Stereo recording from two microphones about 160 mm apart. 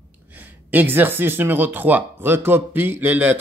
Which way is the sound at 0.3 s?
10° right (ahead or behind).